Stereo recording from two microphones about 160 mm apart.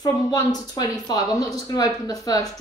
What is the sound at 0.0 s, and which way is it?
Speech, 25° left (ahead or behind).